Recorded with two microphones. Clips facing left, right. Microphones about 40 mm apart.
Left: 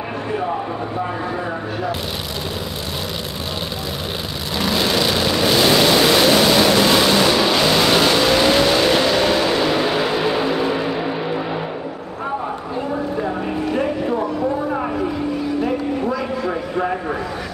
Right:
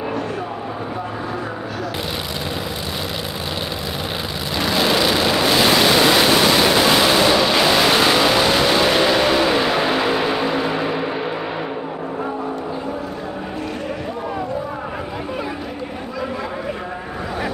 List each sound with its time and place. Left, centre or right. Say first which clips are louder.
4.6 s vehicle: right 1 dB; centre